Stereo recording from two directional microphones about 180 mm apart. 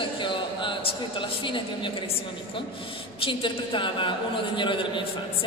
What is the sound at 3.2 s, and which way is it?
A woman's voice, 25° left (ahead or behind).